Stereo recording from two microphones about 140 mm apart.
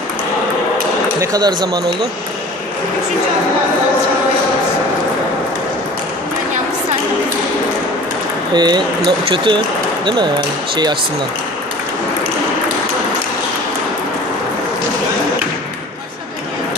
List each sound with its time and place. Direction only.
1.2 s speech: 30° right (ahead or behind)
8.5 s speech: 30° right (ahead or behind)